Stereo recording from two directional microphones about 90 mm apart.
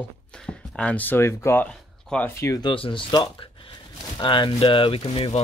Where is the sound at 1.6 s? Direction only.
10° left (ahead or behind).